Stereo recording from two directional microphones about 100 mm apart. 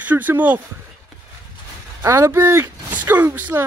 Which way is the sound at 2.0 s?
30° right (ahead or behind).